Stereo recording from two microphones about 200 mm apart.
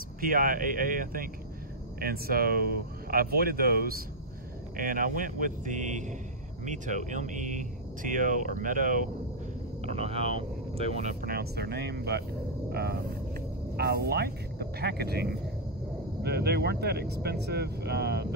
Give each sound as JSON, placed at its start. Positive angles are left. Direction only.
{"t": 0.2, "sound": "speech", "side_deg": -45}
{"t": 9.8, "sound": "speech", "side_deg": -30}